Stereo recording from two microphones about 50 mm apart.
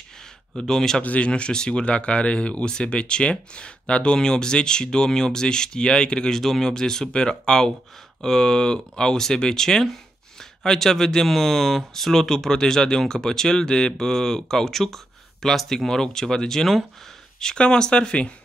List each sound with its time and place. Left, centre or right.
0.6 s speech: centre
1.0 s speech: left